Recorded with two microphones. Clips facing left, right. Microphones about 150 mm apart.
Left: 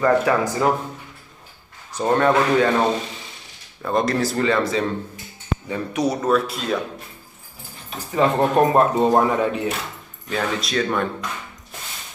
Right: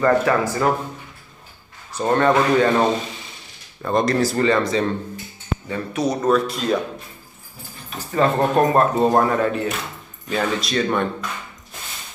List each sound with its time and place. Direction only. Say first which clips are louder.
0.0 s speech: even; 10° left (ahead or behind)
1.9 s a sound: even; 15° left (ahead or behind)
2.1 s speech: right 1 dB; centre (ahead or behind)
8.1 s speech: even; 10° left (ahead or behind)
10.3 s speech: right 1 dB; centre (ahead or behind)